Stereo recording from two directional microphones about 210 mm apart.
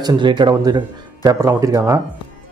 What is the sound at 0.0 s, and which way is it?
A man's voice, 20° right (ahead or behind).